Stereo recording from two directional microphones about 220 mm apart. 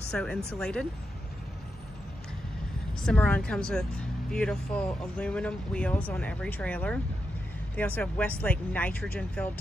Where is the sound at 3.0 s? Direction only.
5° left (ahead or behind).